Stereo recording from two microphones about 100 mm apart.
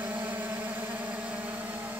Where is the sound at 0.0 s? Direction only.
15° right (ahead or behind).